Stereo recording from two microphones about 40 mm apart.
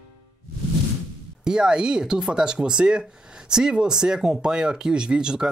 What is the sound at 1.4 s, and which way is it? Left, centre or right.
Speech, centre.